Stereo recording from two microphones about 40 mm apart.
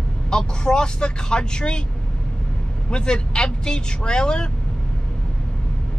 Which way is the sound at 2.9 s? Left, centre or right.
Left.